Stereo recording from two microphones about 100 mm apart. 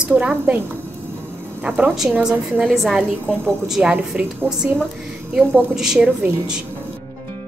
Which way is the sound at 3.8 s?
10° right (ahead or behind).